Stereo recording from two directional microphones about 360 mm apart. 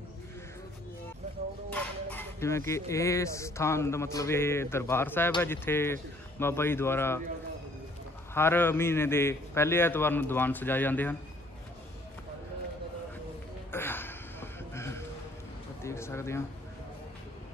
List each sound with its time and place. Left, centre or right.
1.7 s speech: centre
8.4 s a man's voice: centre
13.7 s a sound: centre